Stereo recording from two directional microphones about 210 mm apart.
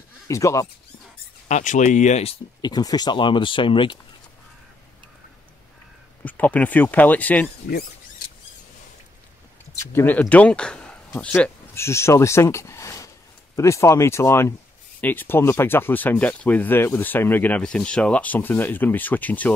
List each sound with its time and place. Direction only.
0.3 s speech: 15° left (ahead or behind)
1.5 s speech: 35° left (ahead or behind)
6.2 s speech: 5° left (ahead or behind)
9.8 s speech: 10° left (ahead or behind)